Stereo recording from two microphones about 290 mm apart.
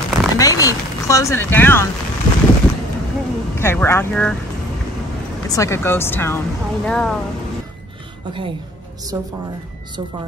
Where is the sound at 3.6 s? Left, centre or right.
Centre.